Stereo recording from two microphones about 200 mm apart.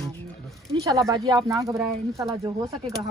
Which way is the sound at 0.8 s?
15° right (ahead or behind).